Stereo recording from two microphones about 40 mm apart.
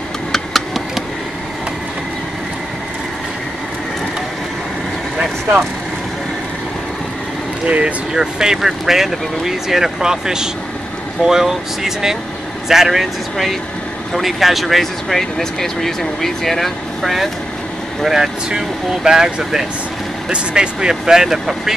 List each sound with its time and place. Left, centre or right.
0.3 s a sound: centre
7.6 s speech: right
8.1 s speech: centre
18.0 s speech: centre